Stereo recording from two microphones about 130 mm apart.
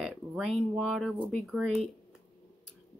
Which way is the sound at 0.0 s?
5° right (ahead or behind).